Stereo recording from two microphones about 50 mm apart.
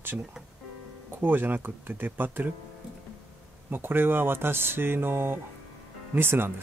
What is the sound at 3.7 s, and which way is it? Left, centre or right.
Speech, right.